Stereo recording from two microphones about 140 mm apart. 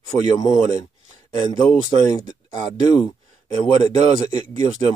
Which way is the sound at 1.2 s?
30° left (ahead or behind).